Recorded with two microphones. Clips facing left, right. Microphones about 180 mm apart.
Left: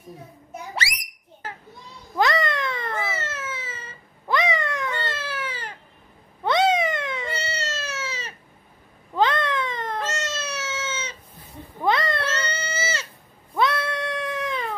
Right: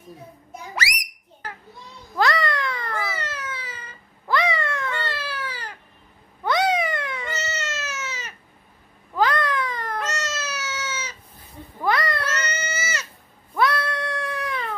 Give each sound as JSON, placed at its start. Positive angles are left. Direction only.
{"t": 0.7, "sound": "a sound", "side_deg": 25}
{"t": 6.4, "sound": "cat", "side_deg": 25}
{"t": 11.8, "sound": "goat", "side_deg": 25}
{"t": 13.6, "sound": "cat", "side_deg": 25}